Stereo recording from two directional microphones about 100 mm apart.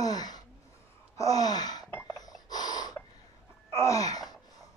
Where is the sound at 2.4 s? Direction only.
45° left (ahead or behind).